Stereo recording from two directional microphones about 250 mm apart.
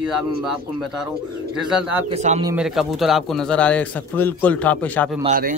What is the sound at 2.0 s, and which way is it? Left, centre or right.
Speech, right.